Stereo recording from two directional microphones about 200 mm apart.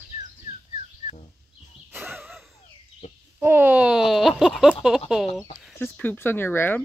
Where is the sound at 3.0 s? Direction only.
35° left (ahead or behind).